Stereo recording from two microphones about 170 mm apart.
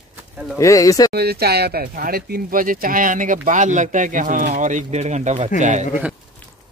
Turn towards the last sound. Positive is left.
turn(degrees=-45)  # may be behind; listen again after turning